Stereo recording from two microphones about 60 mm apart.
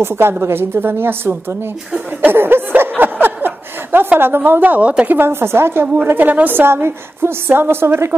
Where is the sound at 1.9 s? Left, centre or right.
Right.